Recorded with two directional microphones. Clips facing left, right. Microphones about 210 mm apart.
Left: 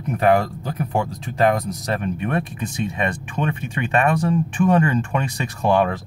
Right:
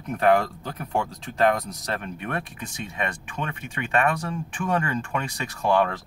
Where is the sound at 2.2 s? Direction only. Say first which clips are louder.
Left 7 dB; 20° left (ahead or behind).